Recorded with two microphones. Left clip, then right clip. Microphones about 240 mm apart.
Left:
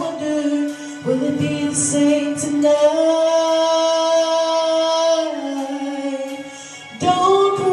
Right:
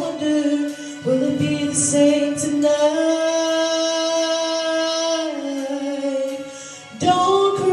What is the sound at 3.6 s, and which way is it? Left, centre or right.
Music, centre.